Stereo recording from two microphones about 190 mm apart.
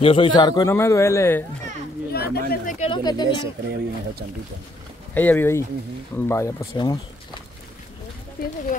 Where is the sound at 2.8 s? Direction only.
20° left (ahead or behind).